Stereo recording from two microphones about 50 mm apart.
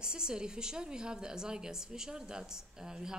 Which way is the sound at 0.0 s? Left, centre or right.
Centre.